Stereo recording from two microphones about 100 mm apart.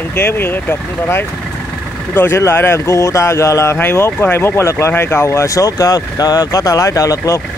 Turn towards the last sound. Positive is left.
turn(degrees=35)  # may be behind; listen again after turning